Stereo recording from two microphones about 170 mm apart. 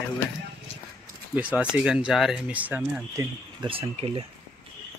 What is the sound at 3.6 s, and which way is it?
Speech, 35° right (ahead or behind).